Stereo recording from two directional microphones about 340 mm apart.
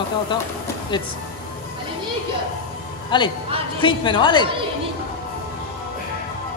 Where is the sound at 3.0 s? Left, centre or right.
Centre.